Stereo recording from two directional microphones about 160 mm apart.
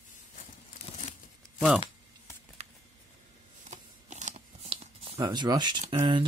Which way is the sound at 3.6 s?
45° right (ahead or behind).